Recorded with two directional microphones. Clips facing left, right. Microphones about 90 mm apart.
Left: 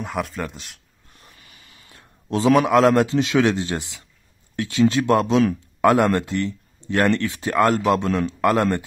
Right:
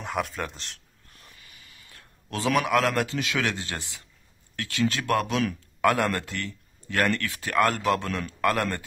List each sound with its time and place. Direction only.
0.0 s speech: centre (ahead or behind)
1.9 s a man's voice: 25° left (ahead or behind)